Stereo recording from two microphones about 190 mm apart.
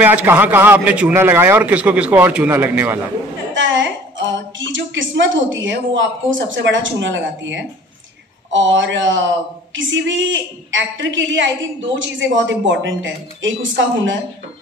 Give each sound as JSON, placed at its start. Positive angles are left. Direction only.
{"t": 0.0, "sound": "a man's voice", "side_deg": -10}
{"t": 3.5, "sound": "a woman's voice", "side_deg": -80}